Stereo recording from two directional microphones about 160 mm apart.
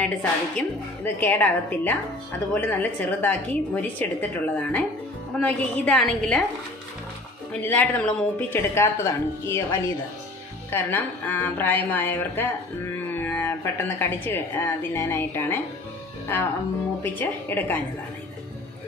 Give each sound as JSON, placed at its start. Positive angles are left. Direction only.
{"t": 0.0, "sound": "a woman's voice", "side_deg": 10}
{"t": 7.6, "sound": "a woman's voice", "side_deg": 10}
{"t": 17.0, "sound": "a woman's voice", "side_deg": 10}